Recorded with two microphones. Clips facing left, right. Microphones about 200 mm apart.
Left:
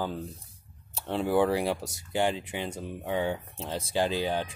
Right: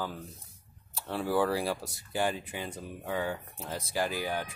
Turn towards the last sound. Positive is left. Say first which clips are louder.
# left 4 dB
turn(degrees=25)  # may be behind; listen again after turning